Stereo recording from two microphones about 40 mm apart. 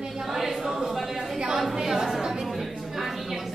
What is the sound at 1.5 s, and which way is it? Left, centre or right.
Speech, centre.